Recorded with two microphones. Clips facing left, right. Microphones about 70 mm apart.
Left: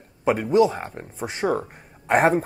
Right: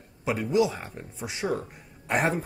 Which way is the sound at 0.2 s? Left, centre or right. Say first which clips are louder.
Left 6 dB; left.